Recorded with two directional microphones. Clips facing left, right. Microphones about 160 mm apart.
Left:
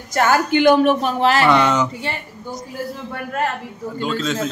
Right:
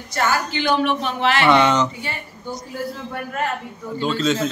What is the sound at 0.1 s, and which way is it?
A woman's voice, 50° left (ahead or behind).